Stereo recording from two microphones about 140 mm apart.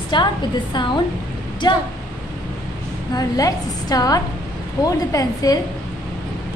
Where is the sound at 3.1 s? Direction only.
25° left (ahead or behind).